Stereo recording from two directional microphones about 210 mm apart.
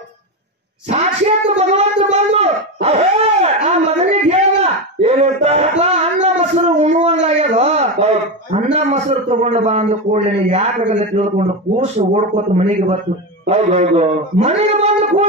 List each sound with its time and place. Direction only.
0.8 s a woman's voice: 30° right (ahead or behind)
1.6 s a sound: 30° right (ahead or behind)
8.7 s a man's voice: 30° right (ahead or behind)